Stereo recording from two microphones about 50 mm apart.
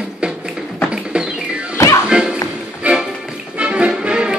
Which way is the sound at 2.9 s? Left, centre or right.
Right.